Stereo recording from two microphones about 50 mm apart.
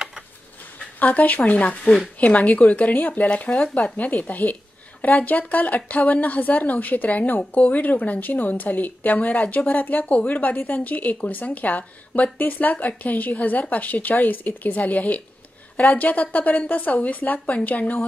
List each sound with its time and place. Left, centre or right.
0.9 s a woman's voice: left
3.3 s speech: left
3.9 s a woman's voice: left